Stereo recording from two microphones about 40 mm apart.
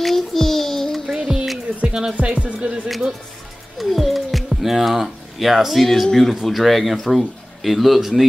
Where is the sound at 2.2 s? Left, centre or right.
Right.